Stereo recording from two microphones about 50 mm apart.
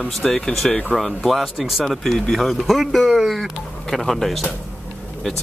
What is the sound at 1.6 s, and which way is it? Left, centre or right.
Speech, centre.